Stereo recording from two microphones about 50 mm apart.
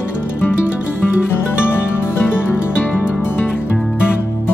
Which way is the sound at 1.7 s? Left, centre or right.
Left.